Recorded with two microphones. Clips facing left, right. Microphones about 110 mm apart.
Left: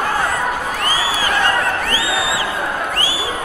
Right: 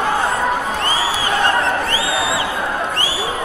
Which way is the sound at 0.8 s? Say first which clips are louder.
Even; 25° right (ahead or behind).